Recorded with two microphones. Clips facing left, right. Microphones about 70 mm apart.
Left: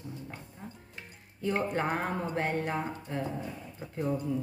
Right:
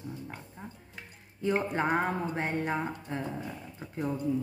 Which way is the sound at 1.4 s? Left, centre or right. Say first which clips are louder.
Right 1 dB; centre.